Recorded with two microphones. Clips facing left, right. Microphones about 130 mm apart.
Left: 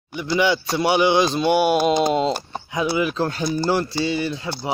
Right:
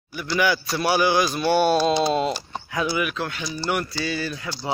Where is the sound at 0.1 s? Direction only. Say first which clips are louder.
Left 3 dB; 20° left (ahead or behind); by 3.7 s 45° left (ahead or behind).